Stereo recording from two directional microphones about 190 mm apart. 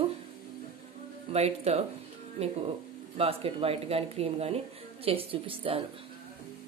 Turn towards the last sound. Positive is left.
turn(degrees=-30)  # may be behind; listen again after turning